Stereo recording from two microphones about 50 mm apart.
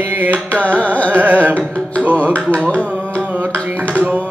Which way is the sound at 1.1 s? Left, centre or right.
Right.